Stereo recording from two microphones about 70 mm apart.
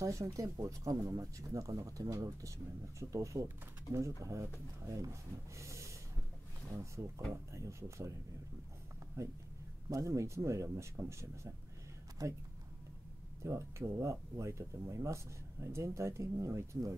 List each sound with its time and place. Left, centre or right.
0.0 s speech: right
5.6 s snort: right
6.7 s speech: right
9.2 s speech: right
12.2 s speech: right
13.4 s speech: right